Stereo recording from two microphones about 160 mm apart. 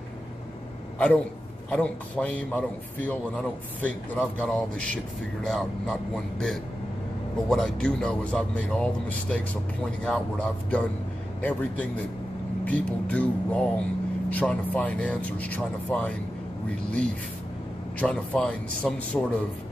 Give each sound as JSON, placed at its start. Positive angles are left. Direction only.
{"t": 0.9, "sound": "a man's voice", "side_deg": 5}